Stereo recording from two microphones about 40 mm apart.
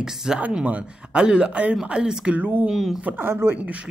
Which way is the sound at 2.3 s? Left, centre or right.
Right.